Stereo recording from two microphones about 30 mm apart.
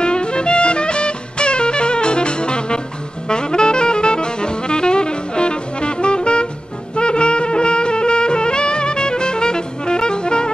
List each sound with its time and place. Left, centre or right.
0.0 s music: left
3.3 s saxophone: left
7.0 s music: left